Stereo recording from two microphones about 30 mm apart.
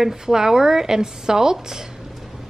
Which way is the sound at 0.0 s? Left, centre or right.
Centre.